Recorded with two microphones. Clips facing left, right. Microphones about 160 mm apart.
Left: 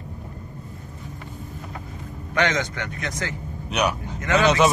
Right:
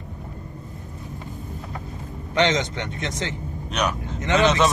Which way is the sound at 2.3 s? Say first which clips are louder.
Right 2 dB; 20° right (ahead or behind).